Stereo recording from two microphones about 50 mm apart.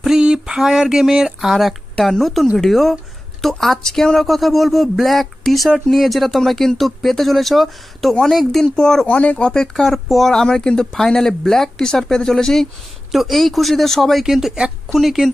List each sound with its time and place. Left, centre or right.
0.0 s a sound: centre
0.6 s speech: centre
9.0 s speech: left
9.4 s speech: centre
10.3 s speech: centre
13.1 s speech: centre
14.2 s speech: centre